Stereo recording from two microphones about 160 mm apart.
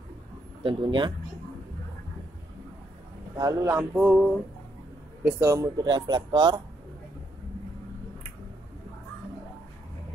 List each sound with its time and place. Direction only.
0.7 s speech: 30° right (ahead or behind)
3.3 s a sound: 15° right (ahead or behind)
5.2 s speech: 20° right (ahead or behind)